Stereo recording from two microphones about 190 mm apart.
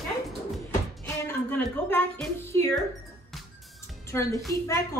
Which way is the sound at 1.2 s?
10° left (ahead or behind).